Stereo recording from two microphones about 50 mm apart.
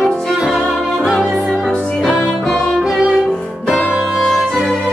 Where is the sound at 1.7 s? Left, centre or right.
Centre.